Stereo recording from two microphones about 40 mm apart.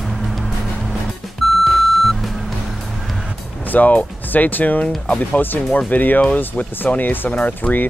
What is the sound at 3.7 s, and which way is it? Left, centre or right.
Speech, left.